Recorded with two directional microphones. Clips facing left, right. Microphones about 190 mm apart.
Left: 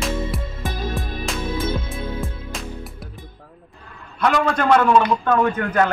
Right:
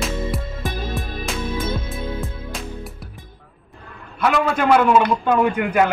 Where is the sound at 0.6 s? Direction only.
15° right (ahead or behind).